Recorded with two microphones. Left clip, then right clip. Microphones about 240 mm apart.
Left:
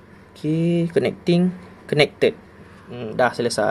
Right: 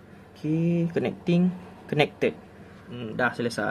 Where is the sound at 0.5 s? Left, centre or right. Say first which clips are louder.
Left 7 dB; centre.